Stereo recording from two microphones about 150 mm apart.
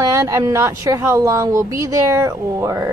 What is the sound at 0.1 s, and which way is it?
Speech, 20° right (ahead or behind).